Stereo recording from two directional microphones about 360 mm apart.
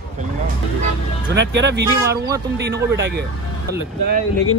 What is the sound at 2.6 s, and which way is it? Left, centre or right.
Speech, right.